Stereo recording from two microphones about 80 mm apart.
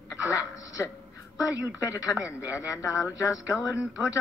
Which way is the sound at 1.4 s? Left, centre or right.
Left.